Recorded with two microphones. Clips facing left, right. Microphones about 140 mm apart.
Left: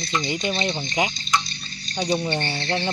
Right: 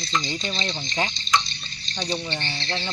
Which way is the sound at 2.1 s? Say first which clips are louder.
Left 7 dB; 45° left (ahead or behind).